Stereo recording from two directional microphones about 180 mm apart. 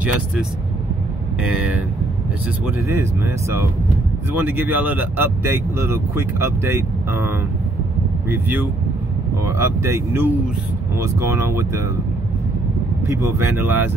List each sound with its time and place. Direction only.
1.5 s speech: 5° right (ahead or behind)
2.9 s speech: 15° right (ahead or behind)
13.0 s speech: 15° right (ahead or behind)